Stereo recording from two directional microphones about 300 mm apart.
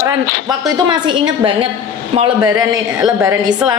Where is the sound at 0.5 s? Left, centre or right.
Centre.